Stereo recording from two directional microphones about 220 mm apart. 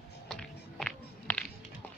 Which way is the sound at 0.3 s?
5° left (ahead or behind).